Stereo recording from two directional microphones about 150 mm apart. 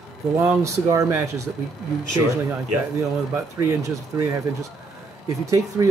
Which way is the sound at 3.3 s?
20° right (ahead or behind).